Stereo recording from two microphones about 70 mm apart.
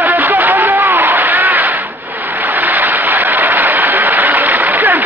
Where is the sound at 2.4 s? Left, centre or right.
Right.